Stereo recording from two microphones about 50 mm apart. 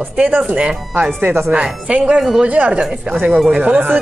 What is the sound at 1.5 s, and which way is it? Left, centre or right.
A woman's voice, centre.